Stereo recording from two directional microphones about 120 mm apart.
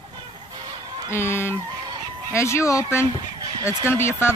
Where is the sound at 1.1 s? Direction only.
20° left (ahead or behind).